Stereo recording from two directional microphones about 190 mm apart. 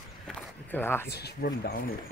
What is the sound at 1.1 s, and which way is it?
Speech, 60° left (ahead or behind).